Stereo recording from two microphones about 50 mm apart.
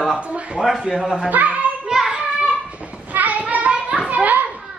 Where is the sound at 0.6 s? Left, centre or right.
Centre.